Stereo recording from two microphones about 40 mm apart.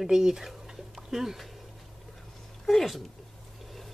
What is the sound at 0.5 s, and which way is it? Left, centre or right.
Dog, centre.